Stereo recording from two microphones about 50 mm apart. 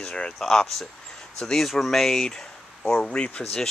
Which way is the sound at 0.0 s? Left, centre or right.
Left.